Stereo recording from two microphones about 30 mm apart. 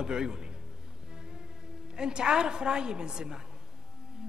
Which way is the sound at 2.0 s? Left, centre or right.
Right.